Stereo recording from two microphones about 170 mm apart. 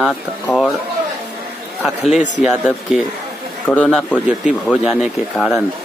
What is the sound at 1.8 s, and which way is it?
Speech, centre (ahead or behind).